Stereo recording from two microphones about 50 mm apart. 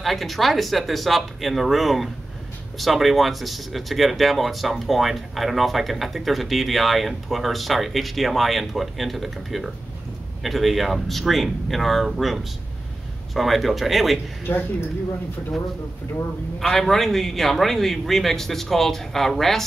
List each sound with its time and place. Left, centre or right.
0.0 s speech: centre
14.5 s speech: left
16.5 s speech: centre